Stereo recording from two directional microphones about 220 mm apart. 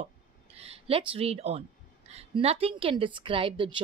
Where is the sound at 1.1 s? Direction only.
25° right (ahead or behind).